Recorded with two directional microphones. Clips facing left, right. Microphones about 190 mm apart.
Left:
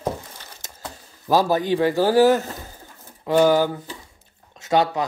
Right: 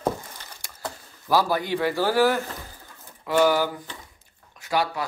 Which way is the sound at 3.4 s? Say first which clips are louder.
Left 3 dB; 20° left (ahead or behind).